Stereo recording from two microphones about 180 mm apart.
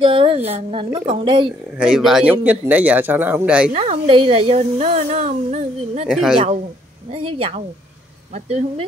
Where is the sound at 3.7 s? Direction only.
35° right (ahead or behind).